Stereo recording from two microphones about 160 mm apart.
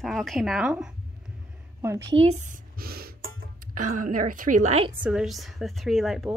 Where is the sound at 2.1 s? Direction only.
45° right (ahead or behind).